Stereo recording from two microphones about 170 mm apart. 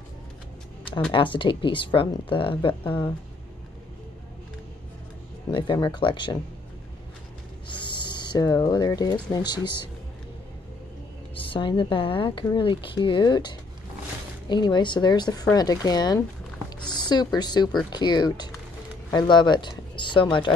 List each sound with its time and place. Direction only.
1.1 s a woman's voice: 30° left (ahead or behind)
5.5 s a woman's voice: 30° left (ahead or behind)
7.8 s speech: 25° left (ahead or behind)
11.3 s a woman's voice: 30° left (ahead or behind)